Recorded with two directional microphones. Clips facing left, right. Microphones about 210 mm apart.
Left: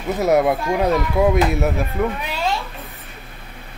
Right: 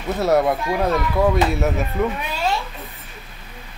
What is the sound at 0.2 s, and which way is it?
Speech, 20° left (ahead or behind).